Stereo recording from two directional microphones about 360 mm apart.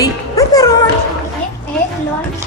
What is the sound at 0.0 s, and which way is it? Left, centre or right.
Music, centre.